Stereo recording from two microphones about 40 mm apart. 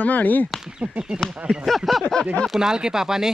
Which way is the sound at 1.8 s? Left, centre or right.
Centre.